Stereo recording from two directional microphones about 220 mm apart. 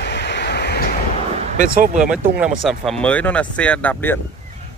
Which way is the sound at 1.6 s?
35° right (ahead or behind).